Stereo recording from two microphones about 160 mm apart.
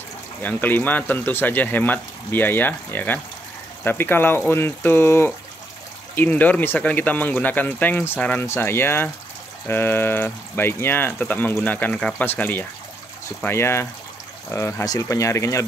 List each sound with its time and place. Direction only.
0.4 s speech: 10° left (ahead or behind)